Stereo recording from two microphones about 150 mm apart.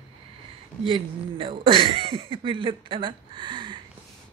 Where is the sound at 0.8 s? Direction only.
35° right (ahead or behind).